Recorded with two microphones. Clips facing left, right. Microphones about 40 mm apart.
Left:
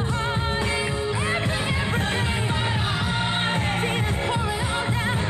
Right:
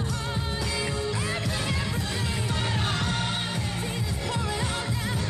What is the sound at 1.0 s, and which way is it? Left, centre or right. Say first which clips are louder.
Music: left 5 dB; left.